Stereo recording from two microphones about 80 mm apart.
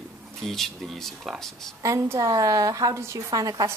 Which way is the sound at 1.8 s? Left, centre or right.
Right.